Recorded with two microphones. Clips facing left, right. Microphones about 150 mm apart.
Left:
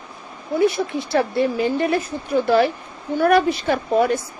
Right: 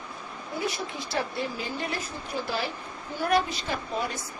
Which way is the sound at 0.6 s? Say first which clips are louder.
Left 13 dB; 60° left (ahead or behind).